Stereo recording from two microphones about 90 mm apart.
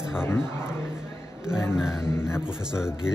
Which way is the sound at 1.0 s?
30° left (ahead or behind).